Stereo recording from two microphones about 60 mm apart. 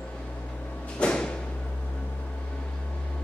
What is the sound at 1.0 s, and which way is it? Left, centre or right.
Music, centre.